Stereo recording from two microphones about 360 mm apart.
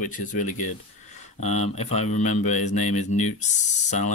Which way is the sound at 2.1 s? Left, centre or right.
Centre.